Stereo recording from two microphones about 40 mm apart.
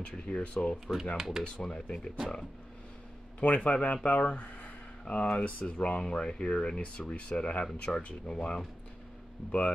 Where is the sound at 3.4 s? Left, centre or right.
Left.